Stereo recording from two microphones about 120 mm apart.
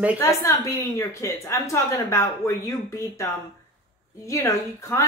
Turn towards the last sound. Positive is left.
turn(degrees=25)  # may be behind; listen again after turning